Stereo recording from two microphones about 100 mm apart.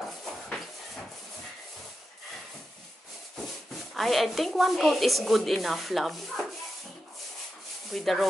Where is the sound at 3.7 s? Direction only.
Centre (ahead or behind).